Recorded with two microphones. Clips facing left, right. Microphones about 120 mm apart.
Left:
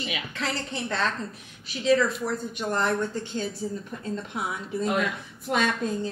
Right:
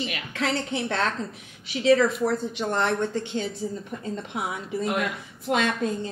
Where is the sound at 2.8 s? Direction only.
80° right.